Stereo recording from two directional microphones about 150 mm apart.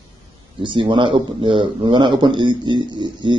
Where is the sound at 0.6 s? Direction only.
35° right (ahead or behind).